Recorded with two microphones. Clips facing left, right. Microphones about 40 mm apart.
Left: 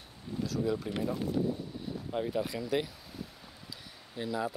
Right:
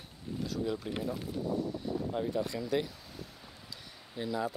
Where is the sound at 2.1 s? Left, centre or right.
Centre.